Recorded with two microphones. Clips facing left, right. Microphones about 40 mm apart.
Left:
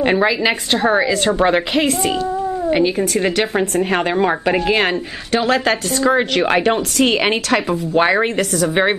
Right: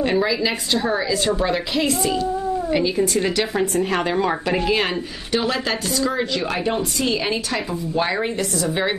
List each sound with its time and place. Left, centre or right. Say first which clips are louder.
0.0 s speech: left 4 dB; left
5.3 s speech: left 6 dB; left
6.3 s speech: left 7 dB; left